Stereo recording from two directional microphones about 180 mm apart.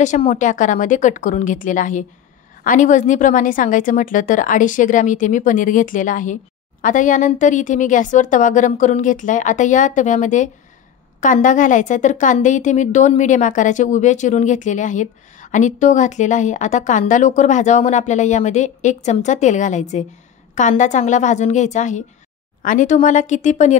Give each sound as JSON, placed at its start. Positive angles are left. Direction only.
{"t": 0.0, "sound": "a woman's voice", "side_deg": 40}